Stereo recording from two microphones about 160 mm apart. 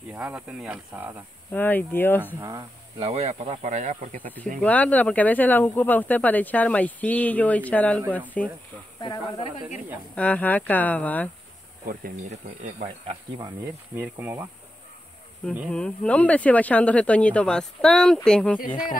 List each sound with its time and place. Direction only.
0.1 s speech: 10° right (ahead or behind)
1.5 s speech: 10° left (ahead or behind)
3.0 s speech: 40° right (ahead or behind)
4.6 s speech: 10° left (ahead or behind)
9.0 s speech: 30° left (ahead or behind)
10.1 s speech: 10° left (ahead or behind)
11.8 s speech: 65° right (ahead or behind)
12.3 s speech: 45° right (ahead or behind)
13.9 s speech: 15° right (ahead or behind)
15.7 s speech: 5° left (ahead or behind)